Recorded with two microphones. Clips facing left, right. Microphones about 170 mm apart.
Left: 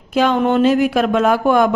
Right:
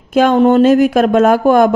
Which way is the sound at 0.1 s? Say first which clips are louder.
Right 5 dB; 50° right (ahead or behind).